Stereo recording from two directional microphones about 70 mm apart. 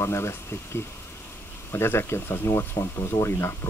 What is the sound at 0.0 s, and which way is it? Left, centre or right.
Speech, left.